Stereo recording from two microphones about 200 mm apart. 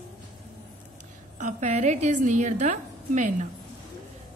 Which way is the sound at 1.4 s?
35° right (ahead or behind).